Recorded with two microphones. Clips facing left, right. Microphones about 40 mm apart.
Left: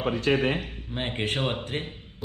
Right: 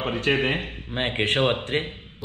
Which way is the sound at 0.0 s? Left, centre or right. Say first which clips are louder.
Right 1 dB; right.